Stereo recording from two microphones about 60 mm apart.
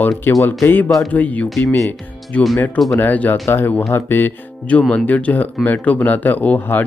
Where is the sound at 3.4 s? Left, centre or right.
Left.